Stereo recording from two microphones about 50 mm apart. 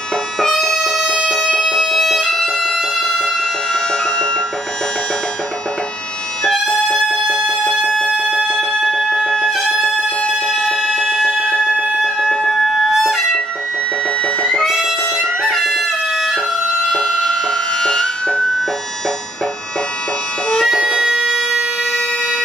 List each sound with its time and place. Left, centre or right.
0.4 s music: centre
6.9 s music: centre
9.5 s music: centre
9.9 s music: centre
14.2 s music: centre
14.7 s music: centre
15.1 s music: centre
20.6 s bagpipes: centre